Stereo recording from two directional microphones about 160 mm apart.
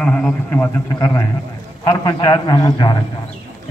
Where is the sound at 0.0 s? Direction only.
5° left (ahead or behind); by 3.0 s 25° left (ahead or behind).